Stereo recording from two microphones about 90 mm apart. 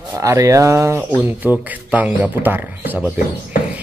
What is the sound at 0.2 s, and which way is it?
Speech, 40° right (ahead or behind).